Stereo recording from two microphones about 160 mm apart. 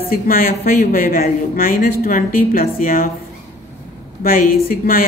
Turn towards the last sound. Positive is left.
turn(degrees=65)  # may be behind; listen again after turning